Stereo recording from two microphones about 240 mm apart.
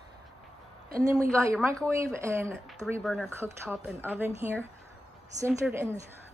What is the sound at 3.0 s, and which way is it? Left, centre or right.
Speech, centre.